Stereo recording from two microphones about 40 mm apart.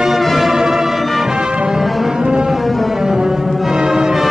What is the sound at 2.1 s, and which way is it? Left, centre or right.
Music, right.